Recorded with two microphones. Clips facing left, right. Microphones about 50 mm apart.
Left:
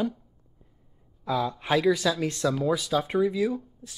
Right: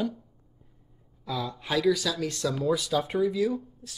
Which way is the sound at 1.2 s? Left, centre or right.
Left.